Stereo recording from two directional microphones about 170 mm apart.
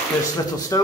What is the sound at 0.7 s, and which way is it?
Speech, 20° left (ahead or behind).